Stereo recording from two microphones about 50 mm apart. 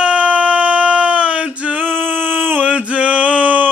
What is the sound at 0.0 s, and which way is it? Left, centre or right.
Male singing, right.